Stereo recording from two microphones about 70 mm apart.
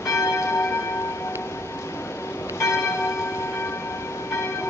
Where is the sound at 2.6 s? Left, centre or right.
Left.